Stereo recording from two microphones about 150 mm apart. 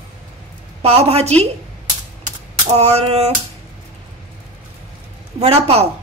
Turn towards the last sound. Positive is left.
turn(degrees=-40)  # may be behind; listen again after turning